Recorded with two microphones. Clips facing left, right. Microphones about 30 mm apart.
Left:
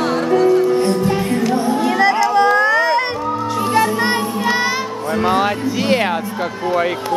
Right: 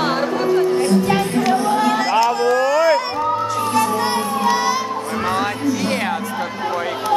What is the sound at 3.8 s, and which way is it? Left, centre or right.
Music, left.